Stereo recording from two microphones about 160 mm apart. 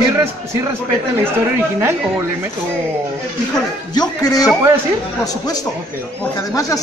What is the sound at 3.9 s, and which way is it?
Speech, 25° left (ahead or behind).